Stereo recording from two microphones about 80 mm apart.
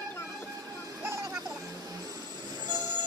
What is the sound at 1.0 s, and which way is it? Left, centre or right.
Vehicle, right.